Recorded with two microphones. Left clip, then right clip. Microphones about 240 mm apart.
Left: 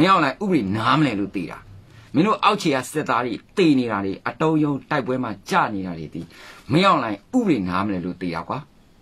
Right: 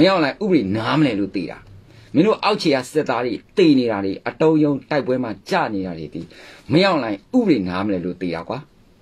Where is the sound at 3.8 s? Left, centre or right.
Left.